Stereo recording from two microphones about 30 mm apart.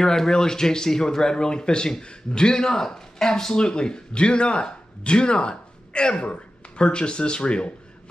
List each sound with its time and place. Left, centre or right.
0.0 s a man's voice: centre; by 7.7 s left